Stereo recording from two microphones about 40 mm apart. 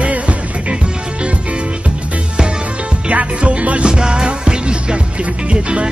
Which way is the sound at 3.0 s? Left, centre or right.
Right.